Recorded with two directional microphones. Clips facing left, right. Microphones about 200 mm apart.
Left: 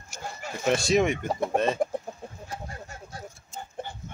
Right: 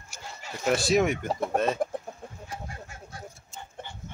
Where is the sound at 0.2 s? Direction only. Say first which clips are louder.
Left 4 dB; 50° left (ahead or behind).